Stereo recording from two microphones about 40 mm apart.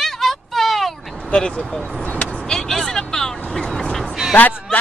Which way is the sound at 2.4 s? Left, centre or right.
Centre.